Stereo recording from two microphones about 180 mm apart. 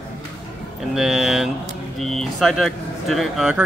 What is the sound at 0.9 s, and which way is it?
Speech, centre (ahead or behind).